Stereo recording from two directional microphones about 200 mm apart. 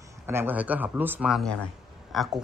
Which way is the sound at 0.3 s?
10° right (ahead or behind).